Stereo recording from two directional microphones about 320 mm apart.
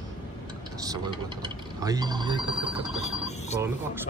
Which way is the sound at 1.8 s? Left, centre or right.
Centre.